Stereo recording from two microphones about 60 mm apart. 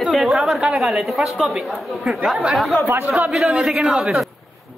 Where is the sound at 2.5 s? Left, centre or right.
Centre.